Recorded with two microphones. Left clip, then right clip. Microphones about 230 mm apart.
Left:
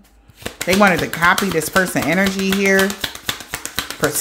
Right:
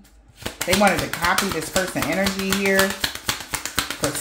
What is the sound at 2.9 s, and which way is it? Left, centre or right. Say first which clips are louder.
Finger snapping: left 1 dB; centre.